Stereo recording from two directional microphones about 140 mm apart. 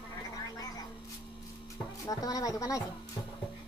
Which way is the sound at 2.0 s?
25° left (ahead or behind).